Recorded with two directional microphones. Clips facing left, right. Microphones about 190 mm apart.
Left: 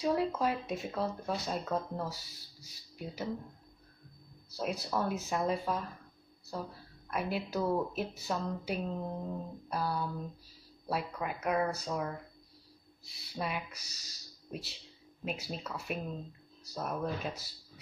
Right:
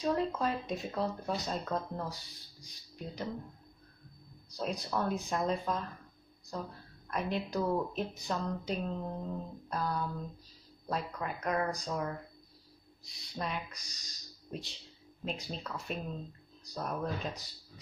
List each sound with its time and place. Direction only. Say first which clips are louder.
0.0 s speech: left 1 dB; 10° left (ahead or behind)
4.6 s a woman's voice: left 1 dB; 5° left (ahead or behind)